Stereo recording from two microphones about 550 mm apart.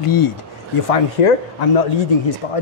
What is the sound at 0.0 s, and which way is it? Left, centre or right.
Speech, left.